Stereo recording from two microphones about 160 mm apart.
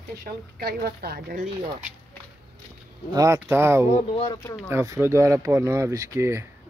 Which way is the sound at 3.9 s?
35° left (ahead or behind).